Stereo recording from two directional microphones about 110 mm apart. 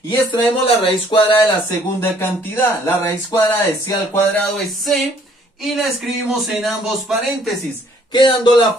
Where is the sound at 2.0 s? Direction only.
20° left (ahead or behind).